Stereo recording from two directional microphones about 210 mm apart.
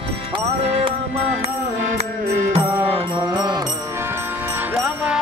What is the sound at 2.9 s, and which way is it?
Music, 25° right (ahead or behind).